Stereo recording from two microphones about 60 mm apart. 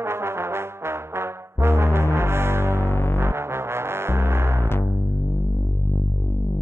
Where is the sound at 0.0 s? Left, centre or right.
Right.